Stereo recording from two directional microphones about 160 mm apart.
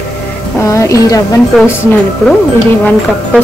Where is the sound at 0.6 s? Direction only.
20° left (ahead or behind).